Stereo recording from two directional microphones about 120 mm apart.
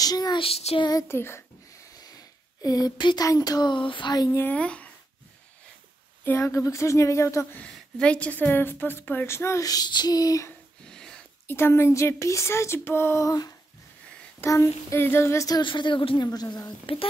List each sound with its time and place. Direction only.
0.0 s speech: 35° left (ahead or behind)
0.4 s child singing: 60° left (ahead or behind)
0.7 s speech: 35° left (ahead or behind)
1.0 s a woman's voice: 20° left (ahead or behind)
2.0 s speech: 30° left (ahead or behind)
4.3 s speech: 15° left (ahead or behind)
6.2 s a woman's voice: 25° left (ahead or behind)
7.5 s a woman's voice: 10° left (ahead or behind); by 10.5 s 30° left (ahead or behind)
10.9 s a sound: 5° left (ahead or behind)
11.4 s a woman's voice: 20° left (ahead or behind)
15.6 s a woman's voice: 40° left (ahead or behind)
16.3 s speech: 30° left (ahead or behind)
16.8 s a woman's voice: 50° left (ahead or behind)